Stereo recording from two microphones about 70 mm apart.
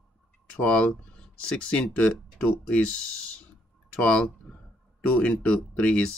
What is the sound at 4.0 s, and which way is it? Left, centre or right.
Speech, centre.